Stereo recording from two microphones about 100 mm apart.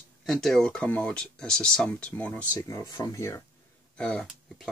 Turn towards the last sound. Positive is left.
turn(degrees=5)  # may be behind; listen again after turning